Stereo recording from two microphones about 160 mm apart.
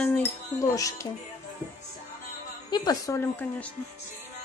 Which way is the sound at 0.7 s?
20° left (ahead or behind).